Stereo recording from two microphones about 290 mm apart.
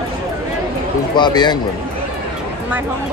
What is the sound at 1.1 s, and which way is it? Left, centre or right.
Speech, centre.